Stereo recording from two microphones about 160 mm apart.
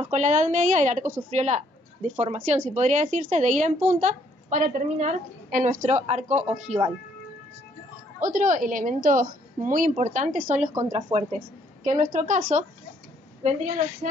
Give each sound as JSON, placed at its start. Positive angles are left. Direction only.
{"t": 0.0, "sound": "a woman's voice", "side_deg": -45}
{"t": 8.2, "sound": "a woman's voice", "side_deg": -55}
{"t": 10.6, "sound": "speech", "side_deg": -20}
{"t": 11.0, "sound": "speech", "side_deg": -40}
{"t": 11.8, "sound": "a woman's voice", "side_deg": -50}